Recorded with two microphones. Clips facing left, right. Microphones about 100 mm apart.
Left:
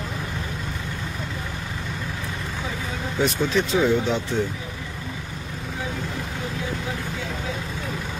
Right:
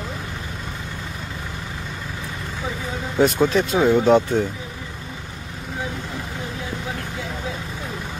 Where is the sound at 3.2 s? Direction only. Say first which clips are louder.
Right 5 dB; 45° right (ahead or behind).